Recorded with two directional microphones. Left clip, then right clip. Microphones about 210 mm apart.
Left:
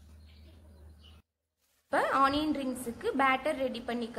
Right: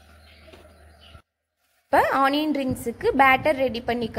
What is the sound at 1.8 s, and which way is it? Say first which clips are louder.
A woman's voice: right 8 dB; 25° right (ahead or behind).